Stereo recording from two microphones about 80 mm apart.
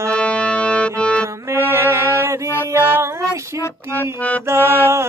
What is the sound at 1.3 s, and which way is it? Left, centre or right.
Music, right.